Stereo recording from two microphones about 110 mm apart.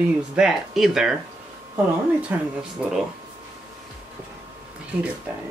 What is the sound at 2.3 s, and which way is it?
Speech, 15° right (ahead or behind).